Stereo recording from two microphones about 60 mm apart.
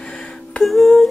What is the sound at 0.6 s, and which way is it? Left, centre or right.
Music, centre.